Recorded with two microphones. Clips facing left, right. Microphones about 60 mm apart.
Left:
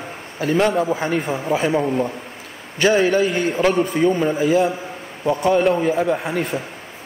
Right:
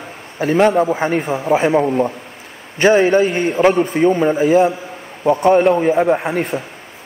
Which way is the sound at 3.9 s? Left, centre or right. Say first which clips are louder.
Right 4 dB; right.